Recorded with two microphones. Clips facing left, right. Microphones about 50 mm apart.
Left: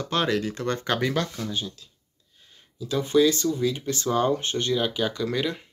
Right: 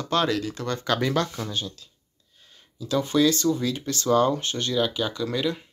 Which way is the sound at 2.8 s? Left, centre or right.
Centre.